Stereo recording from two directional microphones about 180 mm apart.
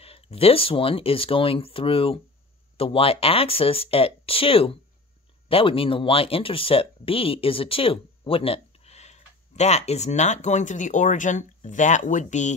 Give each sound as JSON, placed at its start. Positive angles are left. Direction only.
{"t": 0.0, "sound": "speech", "side_deg": 35}